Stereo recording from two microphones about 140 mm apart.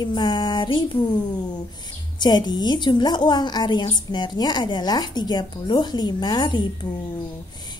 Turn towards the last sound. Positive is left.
turn(degrees=30)  # may be behind; listen again after turning